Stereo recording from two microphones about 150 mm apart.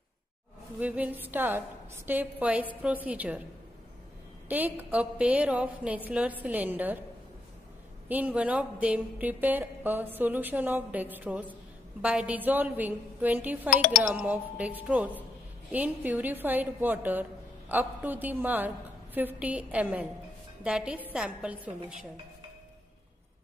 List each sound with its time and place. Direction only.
0.7 s a woman's voice: 10° right (ahead or behind)
4.5 s a woman's voice: 10° right (ahead or behind)
8.1 s a woman's voice: 10° right (ahead or behind)
13.7 s speech: 60° left (ahead or behind)
14.0 s a woman's voice: 10° right (ahead or behind)